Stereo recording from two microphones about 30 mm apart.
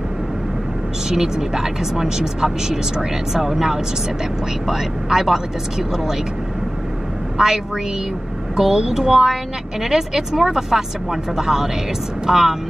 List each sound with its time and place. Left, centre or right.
1.0 s speech: centre
7.3 s a woman's voice: centre
9.1 s speech: centre